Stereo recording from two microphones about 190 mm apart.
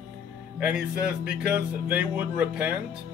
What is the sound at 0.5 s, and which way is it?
Speech, 5° right (ahead or behind).